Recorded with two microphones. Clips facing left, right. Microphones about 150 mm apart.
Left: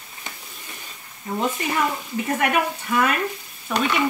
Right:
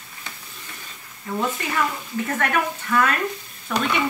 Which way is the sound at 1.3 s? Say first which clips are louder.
Left 1 dB; 20° left (ahead or behind).